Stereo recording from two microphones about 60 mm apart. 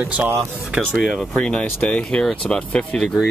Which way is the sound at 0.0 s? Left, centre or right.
Right.